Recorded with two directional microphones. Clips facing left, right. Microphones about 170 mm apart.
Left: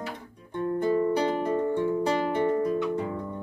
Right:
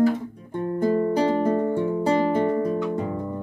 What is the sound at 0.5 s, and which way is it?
Music, 30° right (ahead or behind).